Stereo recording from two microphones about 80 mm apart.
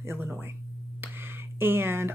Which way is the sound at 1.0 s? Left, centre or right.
Right.